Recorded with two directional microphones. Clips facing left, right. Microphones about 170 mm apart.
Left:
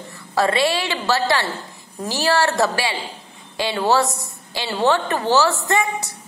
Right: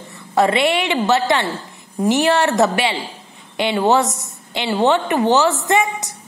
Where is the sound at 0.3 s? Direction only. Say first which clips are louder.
Right 3 dB; 20° right (ahead or behind).